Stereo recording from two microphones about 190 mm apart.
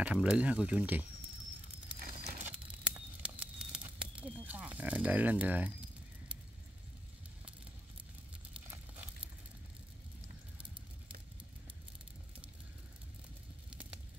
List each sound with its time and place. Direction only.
0.0 s speech: 5° right (ahead or behind)
2.1 s a sound: 35° right (ahead or behind)
2.4 s crumpling: 10° right (ahead or behind)